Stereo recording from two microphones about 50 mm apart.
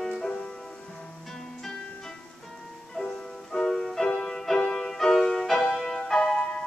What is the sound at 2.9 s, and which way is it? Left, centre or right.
Music, centre.